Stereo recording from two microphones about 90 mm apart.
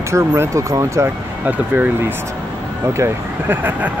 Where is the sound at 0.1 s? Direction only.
30° right (ahead or behind).